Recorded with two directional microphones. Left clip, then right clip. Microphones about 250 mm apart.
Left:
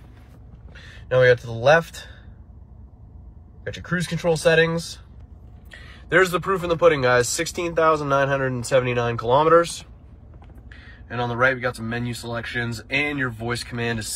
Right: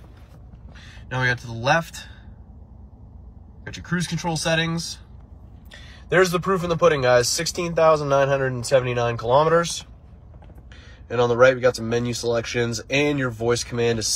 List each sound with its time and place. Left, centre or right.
0.7 s speech: centre
3.6 s speech: centre
5.7 s a man's voice: centre
10.7 s a man's voice: centre